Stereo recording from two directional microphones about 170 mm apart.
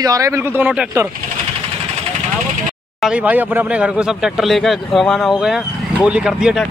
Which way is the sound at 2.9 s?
5° right (ahead or behind).